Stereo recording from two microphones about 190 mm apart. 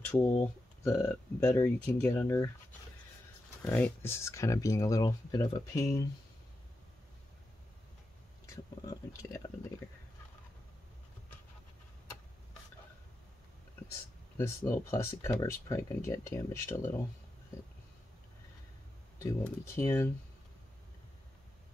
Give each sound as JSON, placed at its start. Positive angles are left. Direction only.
{"t": 0.1, "sound": "speech", "side_deg": 10}
{"t": 3.6, "sound": "speech", "side_deg": 5}
{"t": 8.8, "sound": "speech", "side_deg": 20}
{"t": 14.3, "sound": "speech", "side_deg": 15}
{"t": 19.1, "sound": "speech", "side_deg": 15}